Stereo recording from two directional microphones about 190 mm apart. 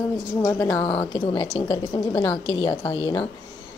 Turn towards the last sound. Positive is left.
turn(degrees=20)  # may be behind; listen again after turning